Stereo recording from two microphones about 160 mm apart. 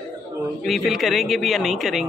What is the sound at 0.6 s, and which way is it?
A man's voice, centre (ahead or behind).